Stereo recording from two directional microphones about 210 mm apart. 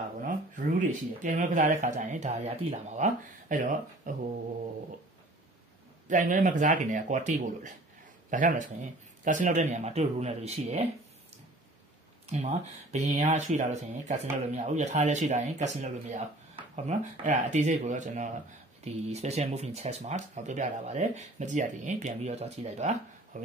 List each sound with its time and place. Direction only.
0.2 s speech: 40° right (ahead or behind)
6.0 s speech: 40° right (ahead or behind)
12.3 s speech: 30° right (ahead or behind)